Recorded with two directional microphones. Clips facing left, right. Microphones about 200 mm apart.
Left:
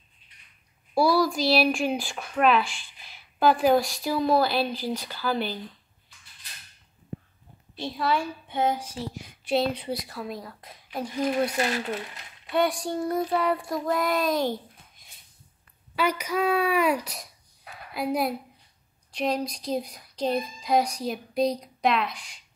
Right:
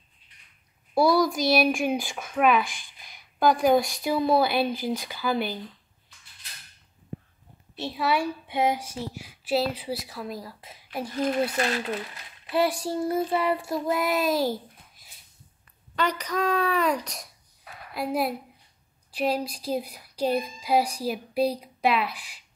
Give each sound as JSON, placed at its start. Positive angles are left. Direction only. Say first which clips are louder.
{"t": 1.2, "sound": "a sound", "louder": "even", "side_deg": -20}
{"t": 1.5, "sound": "child singing", "louder": "right 1 dB", "side_deg": 0}
{"t": 2.6, "sound": "a sound", "louder": "even", "side_deg": -15}
{"t": 3.4, "sound": "child singing", "louder": "even", "side_deg": 0}
{"t": 4.7, "sound": "speech", "louder": "right 1 dB", "side_deg": -15}
{"t": 7.8, "sound": "child singing", "louder": "right 1 dB", "side_deg": -5}
{"t": 13.7, "sound": "a child's voice", "louder": "even", "side_deg": -5}
{"t": 16.0, "sound": "speech", "louder": "left 1 dB", "side_deg": 10}
{"t": 17.9, "sound": "child singing", "louder": "even", "side_deg": 0}
{"t": 19.1, "sound": "speech", "louder": "right 1 dB", "side_deg": -5}